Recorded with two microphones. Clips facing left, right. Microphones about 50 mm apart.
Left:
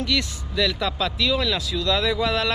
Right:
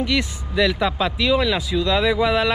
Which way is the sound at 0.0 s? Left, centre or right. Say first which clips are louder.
Right 3 dB; right.